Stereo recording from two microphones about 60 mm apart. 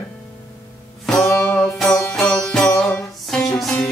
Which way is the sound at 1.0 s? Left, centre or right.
Centre.